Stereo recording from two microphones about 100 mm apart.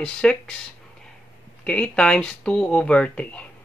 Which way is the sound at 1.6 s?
10° left (ahead or behind).